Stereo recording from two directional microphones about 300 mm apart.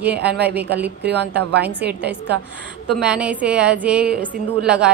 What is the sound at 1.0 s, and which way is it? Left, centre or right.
Speech, right.